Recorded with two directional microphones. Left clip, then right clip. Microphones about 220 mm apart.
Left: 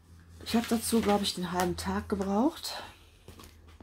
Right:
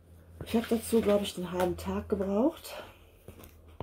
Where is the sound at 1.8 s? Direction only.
25° left (ahead or behind).